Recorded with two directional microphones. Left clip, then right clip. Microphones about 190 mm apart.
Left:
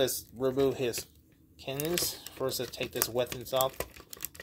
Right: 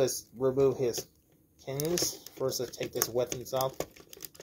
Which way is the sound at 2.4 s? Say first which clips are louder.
Right 1 dB; 30° left (ahead or behind).